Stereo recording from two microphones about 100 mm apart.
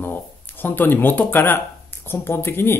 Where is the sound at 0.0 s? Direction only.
20° left (ahead or behind).